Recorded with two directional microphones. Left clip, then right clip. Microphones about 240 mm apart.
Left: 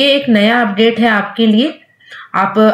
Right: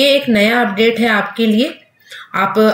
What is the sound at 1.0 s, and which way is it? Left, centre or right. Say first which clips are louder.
Speech: left 2 dB; centre.